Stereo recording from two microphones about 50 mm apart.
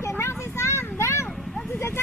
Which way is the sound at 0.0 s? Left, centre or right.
Left.